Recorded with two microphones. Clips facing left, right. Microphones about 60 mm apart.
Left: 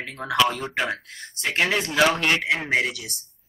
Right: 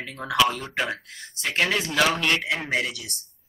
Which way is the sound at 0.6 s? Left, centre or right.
Centre.